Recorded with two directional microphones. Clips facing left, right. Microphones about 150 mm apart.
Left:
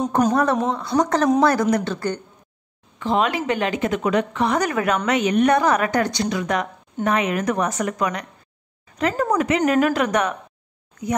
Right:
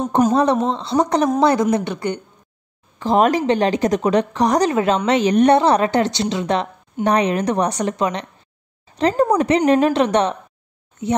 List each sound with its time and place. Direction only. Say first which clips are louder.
0.3 s a woman's voice: right 3 dB; 20° right (ahead or behind)
3.0 s a woman's voice: right 5 dB; 40° right (ahead or behind)